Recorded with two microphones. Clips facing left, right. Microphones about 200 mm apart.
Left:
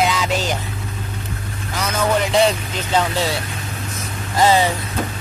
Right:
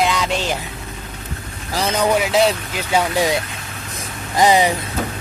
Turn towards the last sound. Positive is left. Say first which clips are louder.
# right 1 dB
turn(degrees=-15)  # may be behind; listen again after turning